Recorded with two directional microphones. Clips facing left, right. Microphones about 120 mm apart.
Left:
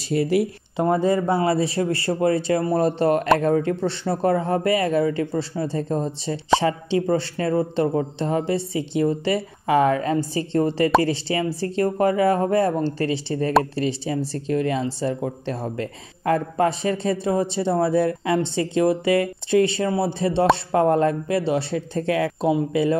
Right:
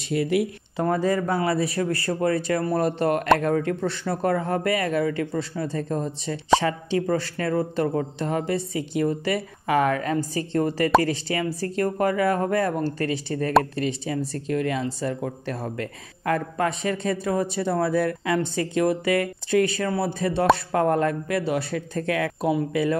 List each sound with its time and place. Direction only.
0.1 s speech: 35° left (ahead or behind)
0.8 s speech: 25° left (ahead or behind)